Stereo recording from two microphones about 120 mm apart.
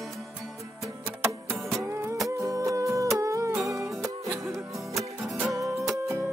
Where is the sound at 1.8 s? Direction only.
20° right (ahead or behind).